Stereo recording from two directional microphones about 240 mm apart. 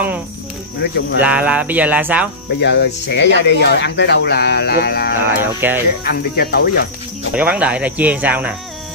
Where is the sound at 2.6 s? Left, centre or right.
Left.